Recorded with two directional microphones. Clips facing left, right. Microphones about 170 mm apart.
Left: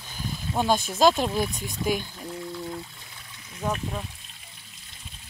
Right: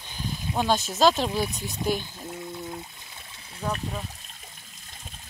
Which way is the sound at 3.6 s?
5° left (ahead or behind).